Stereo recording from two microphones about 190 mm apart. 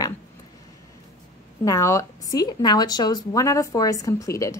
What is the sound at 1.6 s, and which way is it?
A woman's voice, 15° left (ahead or behind).